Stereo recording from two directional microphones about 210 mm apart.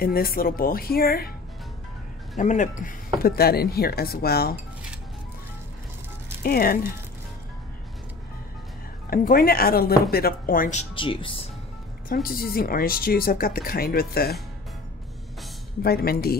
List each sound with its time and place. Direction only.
0.0 s speech: 45° left (ahead or behind)
2.3 s speech: 35° left (ahead or behind)
6.4 s speech: 45° left (ahead or behind)
9.1 s speech: 45° left (ahead or behind); by 11.4 s 25° left (ahead or behind)
12.1 s speech: 45° left (ahead or behind)
15.8 s speech: 45° left (ahead or behind)